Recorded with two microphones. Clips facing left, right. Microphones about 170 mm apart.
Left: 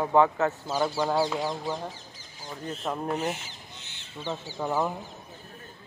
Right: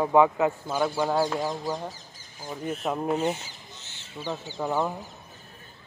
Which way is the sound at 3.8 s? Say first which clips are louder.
Even; 60° left (ahead or behind).